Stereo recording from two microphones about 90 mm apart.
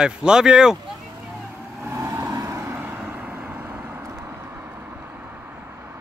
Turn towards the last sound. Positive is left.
turn(degrees=-20)  # may be behind; listen again after turning